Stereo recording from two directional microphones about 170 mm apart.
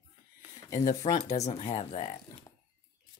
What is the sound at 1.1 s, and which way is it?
Speech, 40° left (ahead or behind).